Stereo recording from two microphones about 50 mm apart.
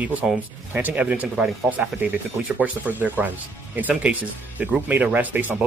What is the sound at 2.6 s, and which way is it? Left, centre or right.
Speech, right.